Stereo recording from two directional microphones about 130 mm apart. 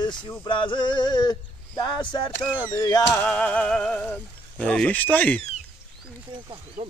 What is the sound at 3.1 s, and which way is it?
Speech, 15° left (ahead or behind).